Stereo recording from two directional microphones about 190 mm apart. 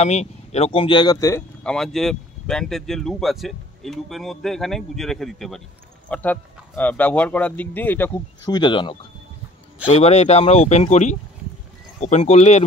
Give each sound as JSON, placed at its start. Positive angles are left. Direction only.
{"t": 0.0, "sound": "speech", "side_deg": 35}
{"t": 1.6, "sound": "speech", "side_deg": 5}
{"t": 8.5, "sound": "speech", "side_deg": 25}